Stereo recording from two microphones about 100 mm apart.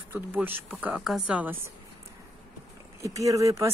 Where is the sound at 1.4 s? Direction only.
20° right (ahead or behind).